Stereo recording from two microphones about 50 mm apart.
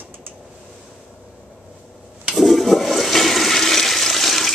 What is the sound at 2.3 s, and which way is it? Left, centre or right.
Toilet flush, centre.